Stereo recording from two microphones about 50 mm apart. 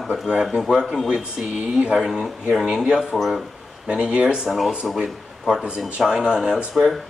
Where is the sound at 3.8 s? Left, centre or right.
Centre.